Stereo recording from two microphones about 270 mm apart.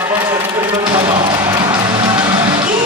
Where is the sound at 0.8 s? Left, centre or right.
Centre.